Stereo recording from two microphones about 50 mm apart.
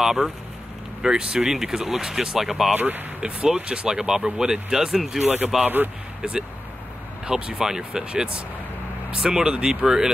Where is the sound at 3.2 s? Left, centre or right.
Centre.